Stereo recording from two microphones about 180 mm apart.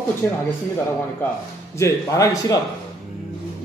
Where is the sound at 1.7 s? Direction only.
15° left (ahead or behind).